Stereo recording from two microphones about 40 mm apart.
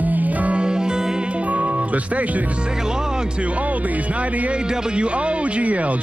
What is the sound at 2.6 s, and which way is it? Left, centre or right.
Speech, centre.